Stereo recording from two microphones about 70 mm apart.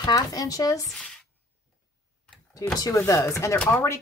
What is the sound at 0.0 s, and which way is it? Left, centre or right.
Speech, left.